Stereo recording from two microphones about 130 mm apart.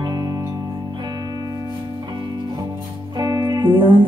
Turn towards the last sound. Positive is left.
turn(degrees=-40)  # may be behind; listen again after turning